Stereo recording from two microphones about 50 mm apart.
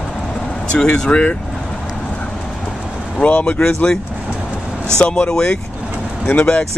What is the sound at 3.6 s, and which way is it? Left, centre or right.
Speech, centre.